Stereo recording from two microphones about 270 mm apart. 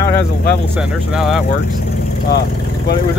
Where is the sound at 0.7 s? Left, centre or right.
Centre.